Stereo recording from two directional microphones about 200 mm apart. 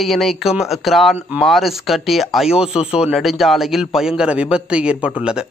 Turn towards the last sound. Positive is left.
turn(degrees=-5)  # may be behind; listen again after turning